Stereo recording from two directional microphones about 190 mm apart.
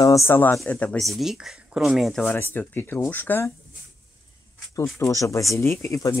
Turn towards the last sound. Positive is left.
turn(degrees=15)  # may be behind; listen again after turning